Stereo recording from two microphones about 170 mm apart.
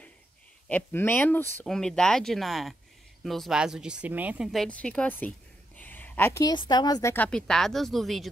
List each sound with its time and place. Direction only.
0.7 s speech: 10° left (ahead or behind)
5.8 s a sound: 10° left (ahead or behind)
6.5 s speech: 25° left (ahead or behind)
7.2 s speech: 5° left (ahead or behind)